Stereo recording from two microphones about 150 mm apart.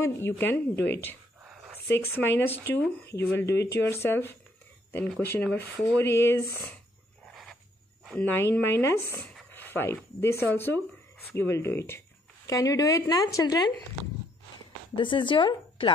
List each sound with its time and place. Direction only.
0.0 s a woman's voice: 15° left (ahead or behind)
5.9 s a woman's voice: 15° left (ahead or behind)
8.0 s a sound: centre (ahead or behind)
8.4 s a woman's voice: 15° left (ahead or behind)
15.0 s speech: 35° left (ahead or behind)